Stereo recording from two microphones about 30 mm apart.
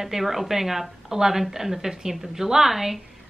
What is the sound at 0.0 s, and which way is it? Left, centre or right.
A woman's voice, centre.